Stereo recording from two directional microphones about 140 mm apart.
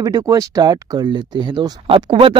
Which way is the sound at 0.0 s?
25° right (ahead or behind).